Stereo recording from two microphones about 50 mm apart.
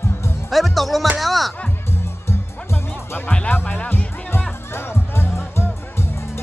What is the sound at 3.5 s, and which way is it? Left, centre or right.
Music, left.